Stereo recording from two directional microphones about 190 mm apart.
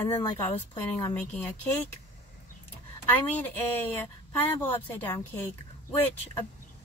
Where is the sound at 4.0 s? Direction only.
10° left (ahead or behind).